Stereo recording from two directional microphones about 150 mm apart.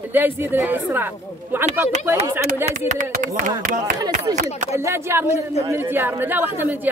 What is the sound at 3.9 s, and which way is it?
Speech, 25° right (ahead or behind).